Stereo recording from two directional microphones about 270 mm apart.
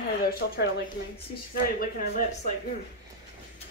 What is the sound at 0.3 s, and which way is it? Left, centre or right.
Speech, left.